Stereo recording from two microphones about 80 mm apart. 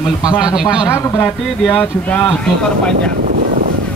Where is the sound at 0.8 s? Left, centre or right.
Left.